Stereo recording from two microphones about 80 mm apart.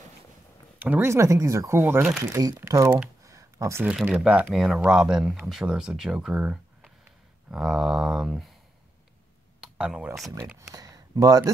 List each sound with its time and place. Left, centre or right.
0.7 s speech: right
1.0 s speech: right
2.3 s speech: right
3.3 s a sound: right
4.1 s speech: centre
9.6 s a sound: centre
10.7 s speech: right